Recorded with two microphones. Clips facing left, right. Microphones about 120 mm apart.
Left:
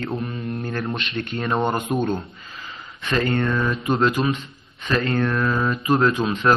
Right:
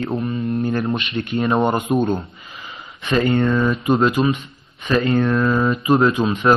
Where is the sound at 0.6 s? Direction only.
15° right (ahead or behind).